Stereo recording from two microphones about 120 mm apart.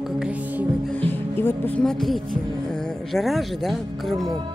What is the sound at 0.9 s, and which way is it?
Music, 15° left (ahead or behind).